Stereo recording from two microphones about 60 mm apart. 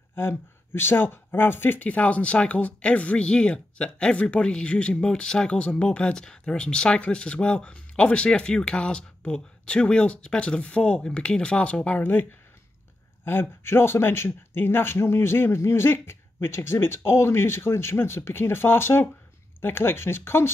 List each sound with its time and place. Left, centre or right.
0.1 s speech: left